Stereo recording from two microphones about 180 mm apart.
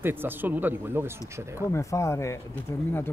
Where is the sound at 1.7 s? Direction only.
15° left (ahead or behind).